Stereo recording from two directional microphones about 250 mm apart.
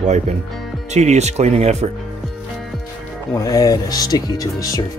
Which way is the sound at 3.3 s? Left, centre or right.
Centre.